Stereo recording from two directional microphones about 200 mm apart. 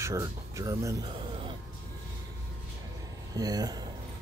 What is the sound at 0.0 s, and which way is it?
Speech, 15° right (ahead or behind).